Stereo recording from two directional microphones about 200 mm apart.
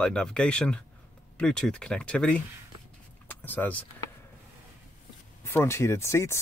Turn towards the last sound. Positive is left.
turn(degrees=15)  # may be behind; listen again after turning